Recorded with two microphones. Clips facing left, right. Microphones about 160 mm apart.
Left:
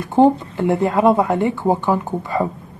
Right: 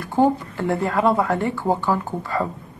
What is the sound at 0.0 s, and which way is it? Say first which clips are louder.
Speech: left 5 dB; 20° left (ahead or behind).